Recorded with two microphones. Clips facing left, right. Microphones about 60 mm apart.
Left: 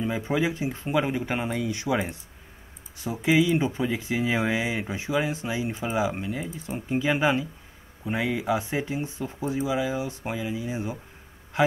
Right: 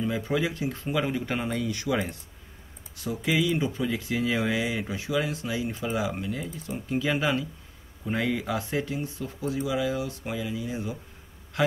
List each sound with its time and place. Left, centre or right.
0.0 s speech: left